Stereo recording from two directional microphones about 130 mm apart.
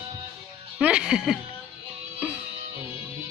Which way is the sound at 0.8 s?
10° right (ahead or behind).